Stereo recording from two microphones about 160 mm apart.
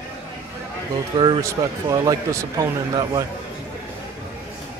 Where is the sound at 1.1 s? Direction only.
30° right (ahead or behind).